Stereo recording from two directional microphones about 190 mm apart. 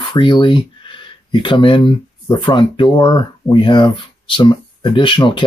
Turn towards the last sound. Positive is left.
turn(degrees=25)  # may be behind; listen again after turning